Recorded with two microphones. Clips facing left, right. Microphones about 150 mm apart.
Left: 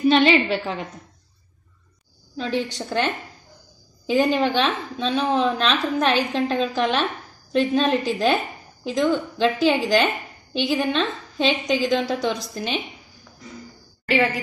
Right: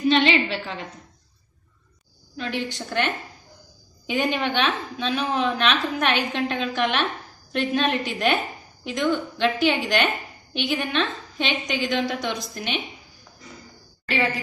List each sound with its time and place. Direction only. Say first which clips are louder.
0.1 s a woman's voice: left 3 dB; 40° left (ahead or behind)
2.3 s a woman's voice: left 4 dB; 35° left (ahead or behind)
4.1 s a woman's voice: left 5 dB; 35° left (ahead or behind)